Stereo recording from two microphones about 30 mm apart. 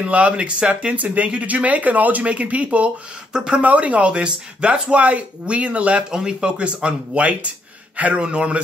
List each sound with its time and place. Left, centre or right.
0.0 s speech: right
0.9 s speech: right
2.2 s speech: right
4.1 s speech: right
5.0 s speech: right
5.9 s speech: right
6.6 s speech: right
7.9 s a man's voice: right
8.2 s speech: right